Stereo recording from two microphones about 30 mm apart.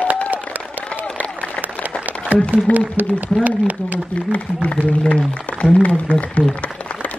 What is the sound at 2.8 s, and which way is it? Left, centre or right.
Speech, right.